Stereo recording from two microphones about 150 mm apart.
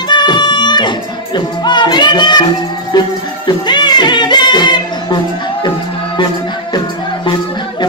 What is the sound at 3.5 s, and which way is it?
Music, 30° left (ahead or behind).